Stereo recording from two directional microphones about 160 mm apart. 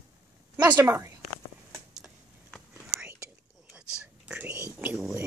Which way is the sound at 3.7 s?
5° right (ahead or behind).